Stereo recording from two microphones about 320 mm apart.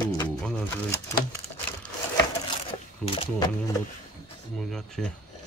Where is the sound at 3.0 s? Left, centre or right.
Centre.